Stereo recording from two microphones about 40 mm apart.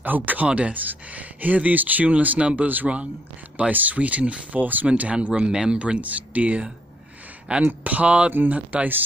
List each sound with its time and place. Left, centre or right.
0.0 s speech: right
0.5 s speech: right
0.7 s speech: right
4.6 s speech: right
4.8 s speech: right
5.4 s speech: right
8.3 s speech: right